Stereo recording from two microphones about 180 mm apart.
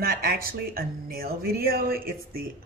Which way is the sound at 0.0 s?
55° right (ahead or behind).